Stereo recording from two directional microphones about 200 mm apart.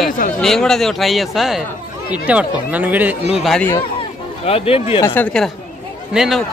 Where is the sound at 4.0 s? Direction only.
30° left (ahead or behind).